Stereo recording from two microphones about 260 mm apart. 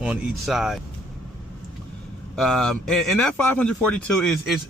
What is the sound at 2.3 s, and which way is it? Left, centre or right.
A man's voice, centre.